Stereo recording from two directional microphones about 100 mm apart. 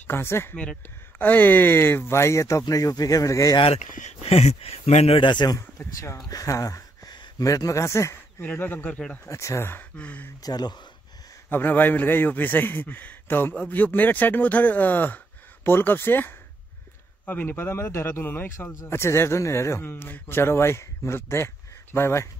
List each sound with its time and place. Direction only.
0.0 s a man's voice: 20° left (ahead or behind)
3.5 s speech: 70° left (ahead or behind); by 5.2 s 90° left
5.2 s a man's voice: 50° left (ahead or behind)
5.6 s speech: 30° left (ahead or behind); by 9.3 s 15° left (ahead or behind)
9.3 s a man's voice: 30° left (ahead or behind); by 10.3 s 15° left (ahead or behind)
10.4 s speech: 40° left (ahead or behind)
11.4 s a man's voice: 20° left (ahead or behind)